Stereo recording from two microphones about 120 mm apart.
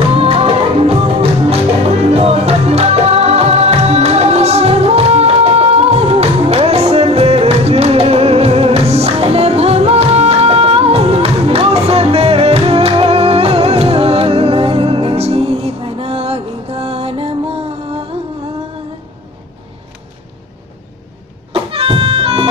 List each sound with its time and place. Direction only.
0.1 s music: 50° right (ahead or behind)
21.5 s harmonica: 50° right (ahead or behind)